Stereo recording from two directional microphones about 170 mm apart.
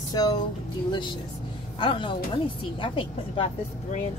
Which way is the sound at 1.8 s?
30° left (ahead or behind).